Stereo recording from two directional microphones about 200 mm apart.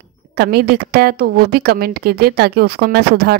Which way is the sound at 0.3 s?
50° right (ahead or behind).